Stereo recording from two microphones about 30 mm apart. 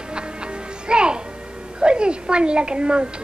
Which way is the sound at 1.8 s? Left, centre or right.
Right.